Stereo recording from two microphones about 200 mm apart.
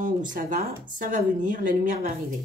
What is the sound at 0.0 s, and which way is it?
Speech, 40° right (ahead or behind).